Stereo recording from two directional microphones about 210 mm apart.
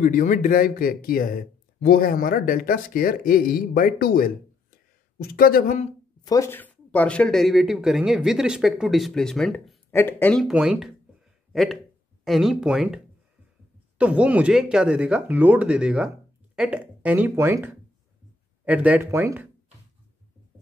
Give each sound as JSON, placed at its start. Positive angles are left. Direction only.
{"t": 0.0, "sound": "speech", "side_deg": 40}
{"t": 6.2, "sound": "speech", "side_deg": 15}
{"t": 10.4, "sound": "speech", "side_deg": -5}